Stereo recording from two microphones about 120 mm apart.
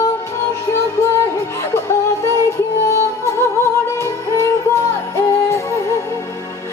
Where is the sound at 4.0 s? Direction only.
25° left (ahead or behind).